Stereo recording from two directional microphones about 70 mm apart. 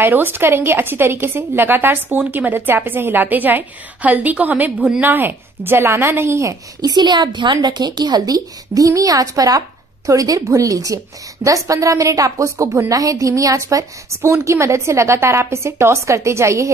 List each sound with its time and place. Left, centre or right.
0.0 s a woman's voice: right
6.8 s a woman's voice: right